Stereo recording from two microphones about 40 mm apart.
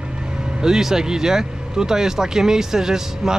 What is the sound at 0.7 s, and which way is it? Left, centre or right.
Speech, centre.